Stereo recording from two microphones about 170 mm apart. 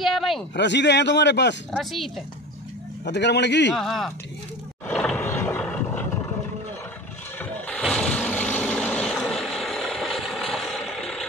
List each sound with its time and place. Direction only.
0.0 s a sound: centre (ahead or behind)
0.6 s a man's voice: 90° left
1.7 s speech: centre (ahead or behind)
3.1 s a man's voice: 90° left
3.7 s speech: centre (ahead or behind)
4.9 s boat: centre (ahead or behind)
5.2 s vehicle: 15° left (ahead or behind)
7.3 s vehicle: 5° left (ahead or behind)